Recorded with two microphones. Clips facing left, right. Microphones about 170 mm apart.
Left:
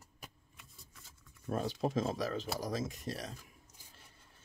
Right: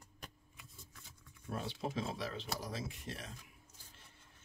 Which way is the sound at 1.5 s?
40° left (ahead or behind).